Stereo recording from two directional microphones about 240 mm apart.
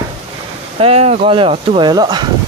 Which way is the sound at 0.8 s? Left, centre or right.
Right.